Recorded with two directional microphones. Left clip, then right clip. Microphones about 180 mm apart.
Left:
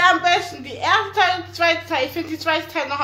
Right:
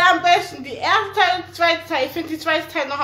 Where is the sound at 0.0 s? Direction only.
5° left (ahead or behind).